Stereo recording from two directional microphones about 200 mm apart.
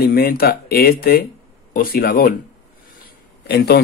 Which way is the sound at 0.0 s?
50° left (ahead or behind).